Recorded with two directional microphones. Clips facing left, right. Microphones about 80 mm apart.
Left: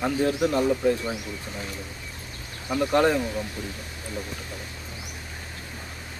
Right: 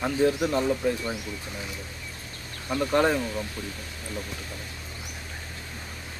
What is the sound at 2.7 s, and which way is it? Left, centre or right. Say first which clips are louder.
Speech: left 2 dB; centre.